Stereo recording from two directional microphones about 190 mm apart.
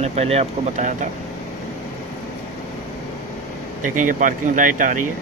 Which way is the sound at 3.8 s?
45° right (ahead or behind).